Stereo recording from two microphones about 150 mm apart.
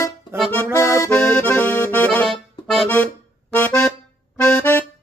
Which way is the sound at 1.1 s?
5° left (ahead or behind).